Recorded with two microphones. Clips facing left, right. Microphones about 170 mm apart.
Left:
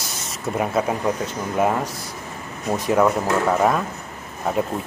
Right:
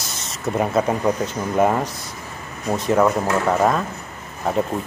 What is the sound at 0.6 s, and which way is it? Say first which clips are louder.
Speech: right 2 dB; 5° left (ahead or behind).